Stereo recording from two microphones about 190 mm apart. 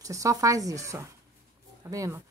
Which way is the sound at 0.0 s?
15° right (ahead or behind).